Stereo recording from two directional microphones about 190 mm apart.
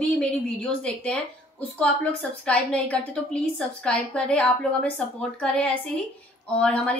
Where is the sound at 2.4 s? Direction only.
5° left (ahead or behind).